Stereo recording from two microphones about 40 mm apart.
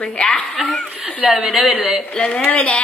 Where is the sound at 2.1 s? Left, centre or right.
Left.